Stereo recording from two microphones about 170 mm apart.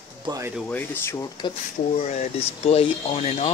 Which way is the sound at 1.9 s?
40° left (ahead or behind).